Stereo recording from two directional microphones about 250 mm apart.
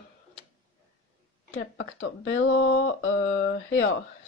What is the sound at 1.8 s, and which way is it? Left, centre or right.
Speech, left.